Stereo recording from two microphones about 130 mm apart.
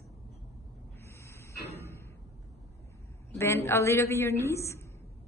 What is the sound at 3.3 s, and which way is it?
A woman's voice, 20° left (ahead or behind).